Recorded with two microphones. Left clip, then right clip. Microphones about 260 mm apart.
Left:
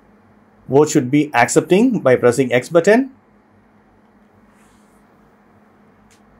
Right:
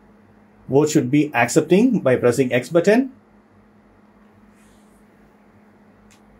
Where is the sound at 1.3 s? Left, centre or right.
Left.